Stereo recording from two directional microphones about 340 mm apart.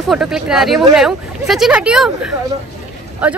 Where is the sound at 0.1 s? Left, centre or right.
Centre.